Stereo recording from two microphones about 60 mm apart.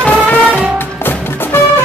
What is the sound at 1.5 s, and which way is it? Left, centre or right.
Music, left.